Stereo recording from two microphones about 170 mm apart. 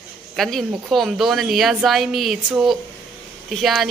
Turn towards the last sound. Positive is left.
turn(degrees=0)  # may be behind; listen again after turning